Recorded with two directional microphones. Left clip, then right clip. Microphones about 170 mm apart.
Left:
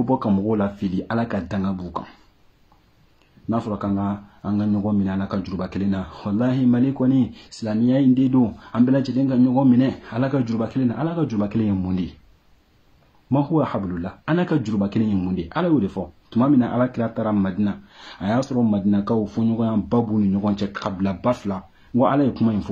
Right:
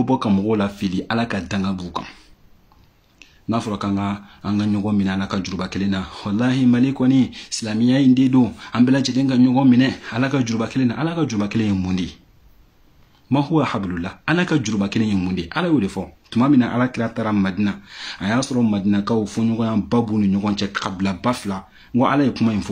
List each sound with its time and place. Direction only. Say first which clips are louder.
0.0 s speech: right 2 dB; 15° right (ahead or behind)
3.4 s speech: right 2 dB; 15° right (ahead or behind)
13.3 s speech: right 2 dB; 15° right (ahead or behind)